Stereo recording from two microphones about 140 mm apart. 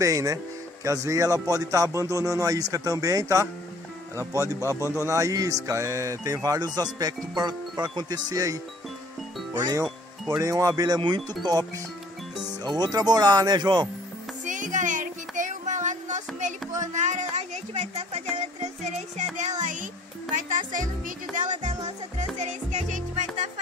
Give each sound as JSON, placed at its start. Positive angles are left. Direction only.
{"t": 0.0, "sound": "speech", "side_deg": -25}
{"t": 10.4, "sound": "speech", "side_deg": -25}
{"t": 12.6, "sound": "speech", "side_deg": -30}
{"t": 14.4, "sound": "music", "side_deg": -65}
{"t": 16.8, "sound": "a sound", "side_deg": -60}
{"t": 20.3, "sound": "speech", "side_deg": -70}
{"t": 21.4, "sound": "music", "side_deg": -60}